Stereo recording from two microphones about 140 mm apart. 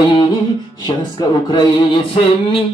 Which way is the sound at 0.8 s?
30° left (ahead or behind).